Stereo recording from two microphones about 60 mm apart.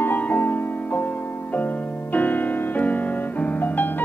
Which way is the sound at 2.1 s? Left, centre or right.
Left.